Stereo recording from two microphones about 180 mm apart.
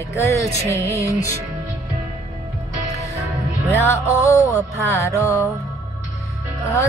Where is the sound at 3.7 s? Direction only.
10° left (ahead or behind).